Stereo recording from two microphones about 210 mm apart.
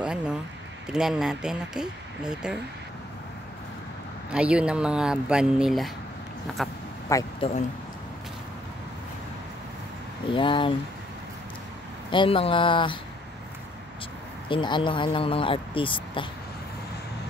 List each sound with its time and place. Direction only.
0.0 s a sound: 5° right (ahead or behind)
0.8 s speech: 5° right (ahead or behind)
4.3 s speech: 5° right (ahead or behind)
7.1 s speech: 15° left (ahead or behind)
10.3 s speech: 25° left (ahead or behind)
12.1 s speech: 25° left (ahead or behind)
14.5 s speech: 25° left (ahead or behind)